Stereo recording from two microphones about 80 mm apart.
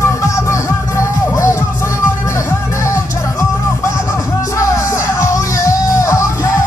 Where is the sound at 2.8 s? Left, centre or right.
Left.